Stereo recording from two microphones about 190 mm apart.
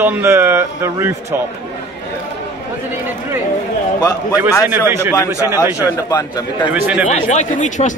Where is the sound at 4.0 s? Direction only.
20° left (ahead or behind).